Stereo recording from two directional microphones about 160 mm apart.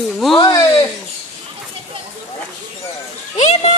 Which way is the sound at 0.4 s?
25° left (ahead or behind).